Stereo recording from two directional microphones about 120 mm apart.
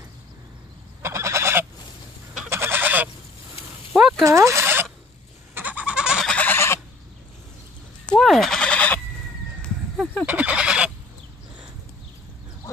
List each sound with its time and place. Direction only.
1.0 s goose: 25° right (ahead or behind)
4.2 s speech: 25° right (ahead or behind)
5.5 s goat: 15° right (ahead or behind)
6.2 s fowl: 10° left (ahead or behind)
8.1 s bleat: centre (ahead or behind)
10.2 s goose: 10° right (ahead or behind)